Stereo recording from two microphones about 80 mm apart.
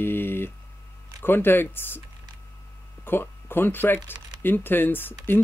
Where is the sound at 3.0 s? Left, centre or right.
Left.